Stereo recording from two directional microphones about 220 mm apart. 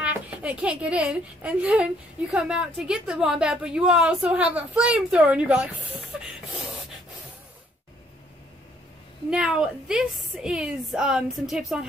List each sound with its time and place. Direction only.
0.0 s a child's voice: 5° right (ahead or behind)
9.3 s a woman's voice: 5° right (ahead or behind)